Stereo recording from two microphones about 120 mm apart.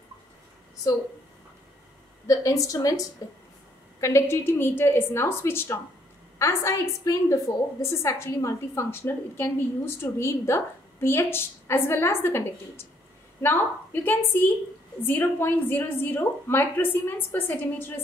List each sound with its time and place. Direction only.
2.2 s a woman's voice: 25° left (ahead or behind)